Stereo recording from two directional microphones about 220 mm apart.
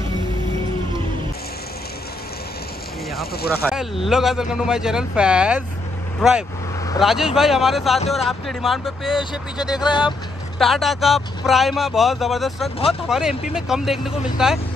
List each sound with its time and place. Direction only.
3.6 s speech: centre (ahead or behind)
9.8 s speech: 20° left (ahead or behind)
10.6 s speech: centre (ahead or behind)